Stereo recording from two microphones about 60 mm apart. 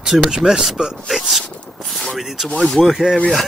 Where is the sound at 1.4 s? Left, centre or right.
Centre.